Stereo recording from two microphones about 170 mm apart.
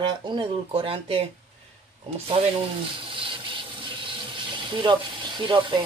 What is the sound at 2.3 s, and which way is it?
Water, 30° right (ahead or behind).